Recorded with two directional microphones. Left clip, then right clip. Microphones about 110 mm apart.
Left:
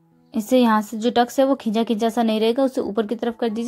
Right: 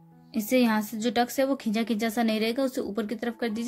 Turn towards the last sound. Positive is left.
turn(degrees=30)  # may be behind; listen again after turning